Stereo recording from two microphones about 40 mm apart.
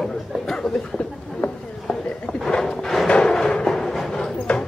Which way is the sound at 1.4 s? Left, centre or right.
Left.